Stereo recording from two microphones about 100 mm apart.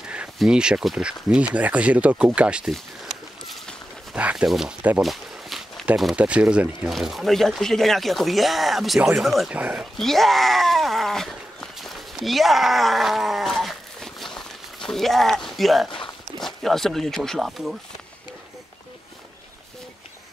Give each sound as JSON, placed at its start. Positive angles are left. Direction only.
{"t": 0.4, "sound": "speech", "side_deg": -10}
{"t": 2.7, "sound": "a sound", "side_deg": 0}
{"t": 4.1, "sound": "speech", "side_deg": -10}
{"t": 5.0, "sound": "a sound", "side_deg": 0}
{"t": 6.1, "sound": "speech", "side_deg": -10}
{"t": 6.9, "sound": "speech", "side_deg": 0}
{"t": 9.5, "sound": "speech", "side_deg": -15}
{"t": 9.9, "sound": "a sound", "side_deg": 5}
{"t": 16.3, "sound": "speech", "side_deg": 5}